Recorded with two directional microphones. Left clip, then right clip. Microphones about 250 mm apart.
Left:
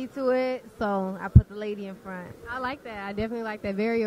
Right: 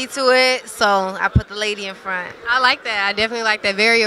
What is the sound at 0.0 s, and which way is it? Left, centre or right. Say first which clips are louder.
Speech: right 11 dB; centre.